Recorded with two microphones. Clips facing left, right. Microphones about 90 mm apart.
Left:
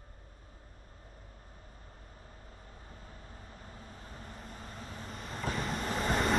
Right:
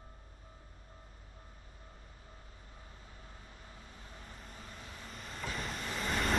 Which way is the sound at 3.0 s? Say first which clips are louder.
Left 3 dB; 40° left (ahead or behind).